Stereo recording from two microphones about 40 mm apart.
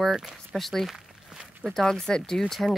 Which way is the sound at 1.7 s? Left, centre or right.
Centre.